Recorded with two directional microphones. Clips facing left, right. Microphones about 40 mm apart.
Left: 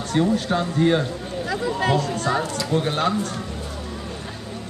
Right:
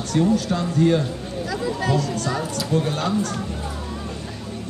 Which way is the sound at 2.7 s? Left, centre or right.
Left.